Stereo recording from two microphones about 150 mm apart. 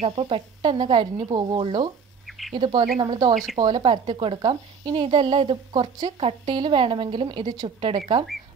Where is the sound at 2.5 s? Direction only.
35° right (ahead or behind).